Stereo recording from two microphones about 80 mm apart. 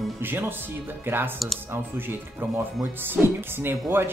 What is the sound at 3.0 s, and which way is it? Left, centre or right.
Speech, right.